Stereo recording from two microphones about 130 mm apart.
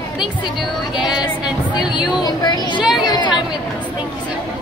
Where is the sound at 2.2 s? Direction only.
30° left (ahead or behind).